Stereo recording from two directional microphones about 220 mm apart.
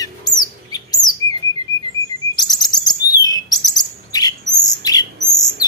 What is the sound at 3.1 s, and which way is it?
Bird, 15° left (ahead or behind).